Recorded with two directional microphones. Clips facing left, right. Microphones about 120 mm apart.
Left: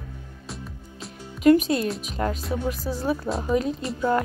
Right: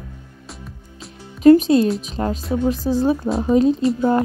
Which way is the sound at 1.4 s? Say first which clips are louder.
Right 7 dB; 30° right (ahead or behind).